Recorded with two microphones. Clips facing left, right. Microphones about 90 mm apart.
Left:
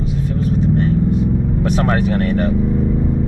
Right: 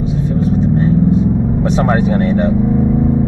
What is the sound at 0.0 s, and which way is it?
Vehicle, centre (ahead or behind).